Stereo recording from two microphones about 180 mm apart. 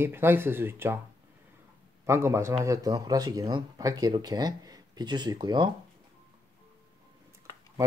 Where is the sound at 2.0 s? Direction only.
15° right (ahead or behind).